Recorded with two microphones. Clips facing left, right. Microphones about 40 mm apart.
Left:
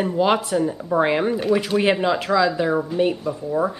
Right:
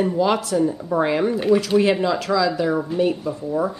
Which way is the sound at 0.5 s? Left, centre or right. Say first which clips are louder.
Even; centre.